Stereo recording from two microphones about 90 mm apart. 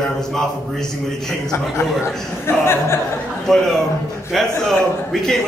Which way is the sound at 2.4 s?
30° left (ahead or behind).